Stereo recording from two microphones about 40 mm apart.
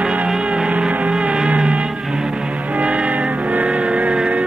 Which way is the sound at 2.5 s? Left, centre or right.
Right.